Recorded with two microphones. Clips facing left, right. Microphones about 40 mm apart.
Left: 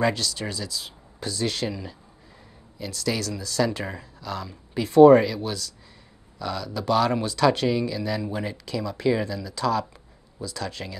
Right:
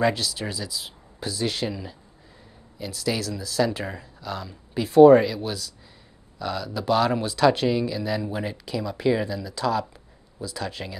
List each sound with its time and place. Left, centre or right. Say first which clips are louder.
0.0 s speech: right 1 dB; centre